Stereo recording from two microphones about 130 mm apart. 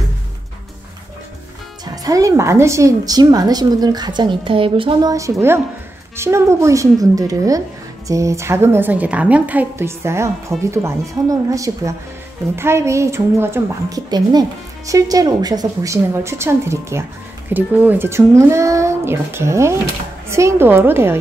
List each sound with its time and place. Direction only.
2.0 s a woman's voice: 25° right (ahead or behind); by 5.1 s 40° right (ahead or behind)
5.1 s a woman's voice: 25° right (ahead or behind)